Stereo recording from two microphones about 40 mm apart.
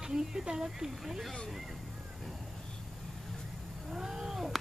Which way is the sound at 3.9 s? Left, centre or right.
Centre.